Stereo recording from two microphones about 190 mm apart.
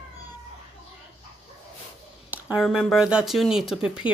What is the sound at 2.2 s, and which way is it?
Speech, 5° right (ahead or behind).